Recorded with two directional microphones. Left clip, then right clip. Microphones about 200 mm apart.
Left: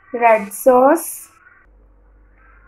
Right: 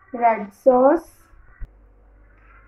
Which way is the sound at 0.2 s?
30° left (ahead or behind).